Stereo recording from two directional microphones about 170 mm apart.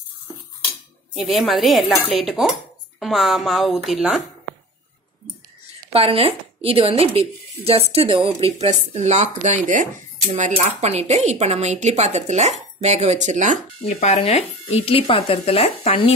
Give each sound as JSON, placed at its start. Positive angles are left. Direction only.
{"t": 1.1, "sound": "cutlery", "side_deg": 0}
{"t": 5.9, "sound": "speech", "side_deg": -35}
{"t": 13.8, "sound": "speech", "side_deg": 40}